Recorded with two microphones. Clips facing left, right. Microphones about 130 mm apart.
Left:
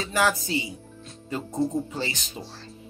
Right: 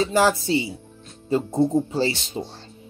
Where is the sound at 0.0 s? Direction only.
30° right (ahead or behind).